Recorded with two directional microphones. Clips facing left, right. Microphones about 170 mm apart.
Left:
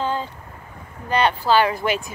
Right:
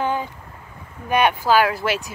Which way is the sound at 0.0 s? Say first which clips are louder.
Right 1 dB; 15° right (ahead or behind).